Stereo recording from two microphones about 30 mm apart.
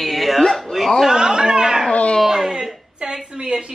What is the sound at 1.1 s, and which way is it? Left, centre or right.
Speech, right.